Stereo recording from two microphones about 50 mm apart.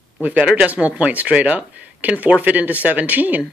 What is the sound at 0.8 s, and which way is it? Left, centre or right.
Speech, right.